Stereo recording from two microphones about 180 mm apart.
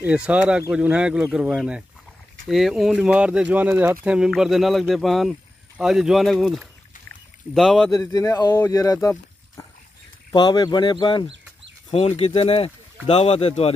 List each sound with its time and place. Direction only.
0.0 s speech: 5° right (ahead or behind)
7.9 s speech: 20° left (ahead or behind)
10.3 s speech: 25° left (ahead or behind)